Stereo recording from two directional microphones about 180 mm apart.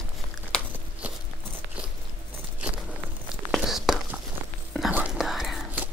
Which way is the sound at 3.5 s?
Centre (ahead or behind).